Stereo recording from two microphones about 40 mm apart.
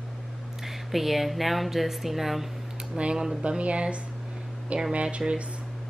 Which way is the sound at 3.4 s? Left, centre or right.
Right.